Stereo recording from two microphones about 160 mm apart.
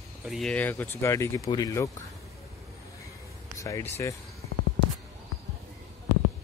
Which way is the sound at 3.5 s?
20° left (ahead or behind).